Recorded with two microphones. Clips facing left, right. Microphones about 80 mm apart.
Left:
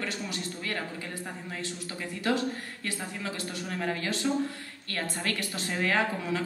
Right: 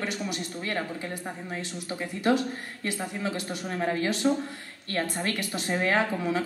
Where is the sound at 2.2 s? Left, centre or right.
Right.